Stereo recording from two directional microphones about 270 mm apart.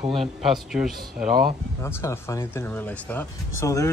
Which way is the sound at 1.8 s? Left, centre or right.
Centre.